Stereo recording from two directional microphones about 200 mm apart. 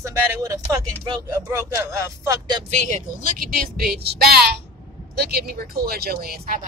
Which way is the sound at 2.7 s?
40° right (ahead or behind).